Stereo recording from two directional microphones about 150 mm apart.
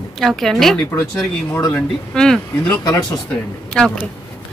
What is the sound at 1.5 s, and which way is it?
Speech, 15° left (ahead or behind).